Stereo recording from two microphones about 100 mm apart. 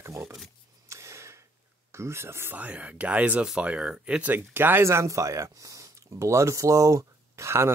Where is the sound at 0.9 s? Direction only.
30° right (ahead or behind).